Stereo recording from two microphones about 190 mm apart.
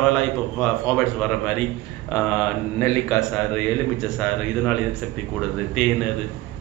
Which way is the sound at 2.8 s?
5° left (ahead or behind).